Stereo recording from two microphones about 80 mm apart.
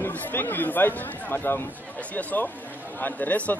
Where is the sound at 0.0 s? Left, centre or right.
Left.